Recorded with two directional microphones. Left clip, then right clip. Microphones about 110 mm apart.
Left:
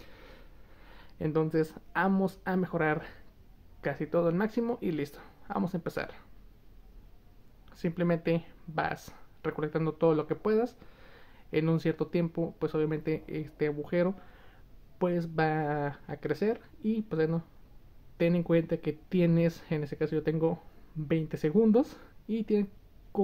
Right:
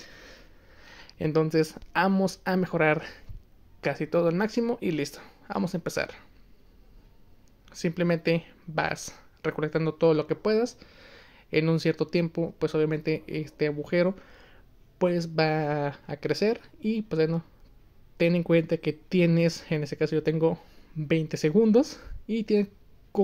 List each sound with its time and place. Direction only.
0.0 s a sound: 15° right (ahead or behind)
0.8 s speech: 35° right (ahead or behind)
7.7 s speech: 25° right (ahead or behind)